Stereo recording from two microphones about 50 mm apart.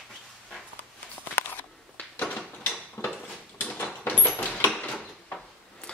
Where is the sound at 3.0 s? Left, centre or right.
Left.